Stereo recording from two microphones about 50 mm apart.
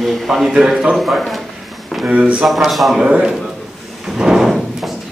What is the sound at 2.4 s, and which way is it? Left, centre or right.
Speech, centre.